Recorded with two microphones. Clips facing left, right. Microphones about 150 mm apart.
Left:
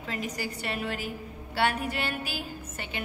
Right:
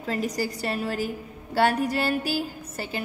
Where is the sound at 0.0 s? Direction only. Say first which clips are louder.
Right 6 dB; 40° right (ahead or behind).